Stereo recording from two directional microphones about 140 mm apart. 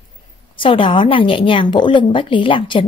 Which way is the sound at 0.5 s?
40° left (ahead or behind).